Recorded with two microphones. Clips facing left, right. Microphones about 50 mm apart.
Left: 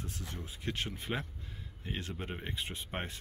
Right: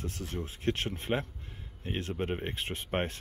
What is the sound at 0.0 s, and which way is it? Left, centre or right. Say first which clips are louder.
Speech: right 6 dB; right.